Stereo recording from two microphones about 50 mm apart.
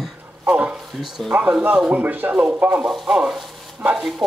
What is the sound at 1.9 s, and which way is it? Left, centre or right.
Speech, right.